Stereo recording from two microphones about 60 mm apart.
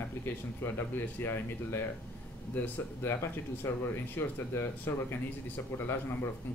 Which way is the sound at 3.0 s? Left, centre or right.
Left.